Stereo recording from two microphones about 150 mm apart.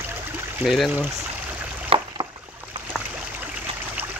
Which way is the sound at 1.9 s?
40° right (ahead or behind).